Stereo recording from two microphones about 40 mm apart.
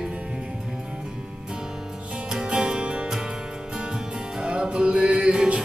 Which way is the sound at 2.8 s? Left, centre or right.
Right.